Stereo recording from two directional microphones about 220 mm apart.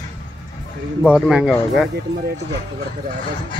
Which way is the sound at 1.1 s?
5° right (ahead or behind).